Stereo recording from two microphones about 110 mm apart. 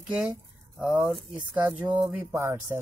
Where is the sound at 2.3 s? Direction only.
25° right (ahead or behind).